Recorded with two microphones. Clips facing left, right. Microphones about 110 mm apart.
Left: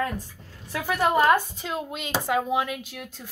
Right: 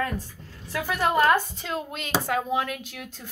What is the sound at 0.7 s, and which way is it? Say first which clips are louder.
Speech: left 1 dB; 15° left (ahead or behind).